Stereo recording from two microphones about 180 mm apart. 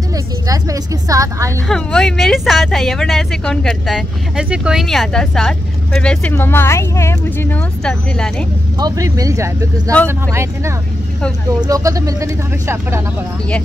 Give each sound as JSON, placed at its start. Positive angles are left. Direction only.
{"t": 0.5, "sound": "a woman's voice", "side_deg": -20}
{"t": 1.7, "sound": "speech", "side_deg": 5}
{"t": 8.7, "sound": "speech", "side_deg": -20}